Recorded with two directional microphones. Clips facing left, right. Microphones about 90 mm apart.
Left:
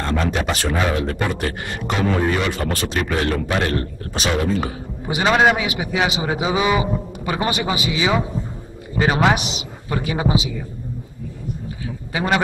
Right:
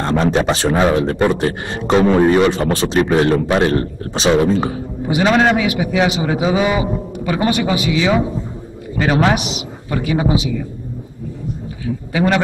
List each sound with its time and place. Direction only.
0.0 s speech: 30° right (ahead or behind)
5.0 s a man's voice: 5° left (ahead or behind)
12.1 s a man's voice: 10° left (ahead or behind)